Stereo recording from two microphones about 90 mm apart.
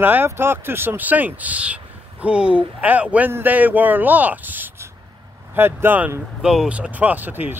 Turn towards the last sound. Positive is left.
turn(degrees=-20)  # may be behind; listen again after turning